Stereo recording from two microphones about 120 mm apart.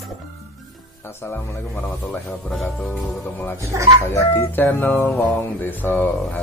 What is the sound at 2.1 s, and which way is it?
Speech, 5° left (ahead or behind).